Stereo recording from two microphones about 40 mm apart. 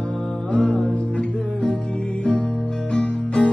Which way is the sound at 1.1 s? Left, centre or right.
Left.